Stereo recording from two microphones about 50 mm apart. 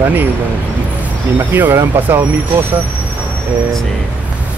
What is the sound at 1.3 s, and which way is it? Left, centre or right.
Speech, right.